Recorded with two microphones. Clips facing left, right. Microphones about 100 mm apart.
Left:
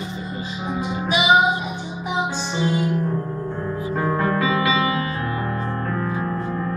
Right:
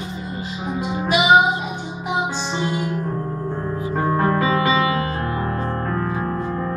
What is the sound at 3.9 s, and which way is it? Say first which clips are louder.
Music: right 2 dB; 40° right (ahead or behind).